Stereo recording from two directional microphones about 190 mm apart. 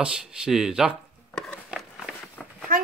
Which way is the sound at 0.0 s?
5° right (ahead or behind).